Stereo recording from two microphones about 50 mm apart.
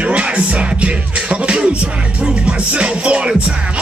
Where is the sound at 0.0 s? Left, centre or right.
Right.